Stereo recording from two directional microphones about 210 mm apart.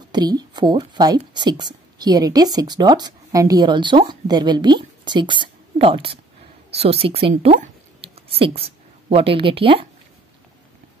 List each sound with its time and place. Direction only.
0.1 s a woman's voice: 20° right (ahead or behind)